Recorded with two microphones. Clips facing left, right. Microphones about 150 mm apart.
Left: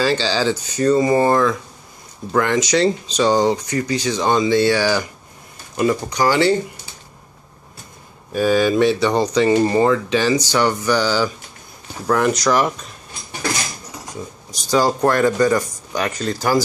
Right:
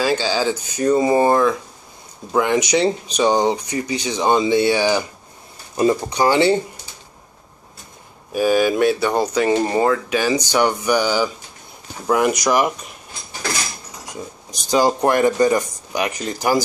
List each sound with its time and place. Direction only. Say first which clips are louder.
0.0 s speech: left 1 dB; 10° right (ahead or behind)
8.3 s speech: even; 10° right (ahead or behind)
14.5 s speech: even; 20° right (ahead or behind)